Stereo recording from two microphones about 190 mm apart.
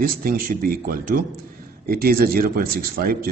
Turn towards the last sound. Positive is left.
turn(degrees=-50)  # may be behind; listen again after turning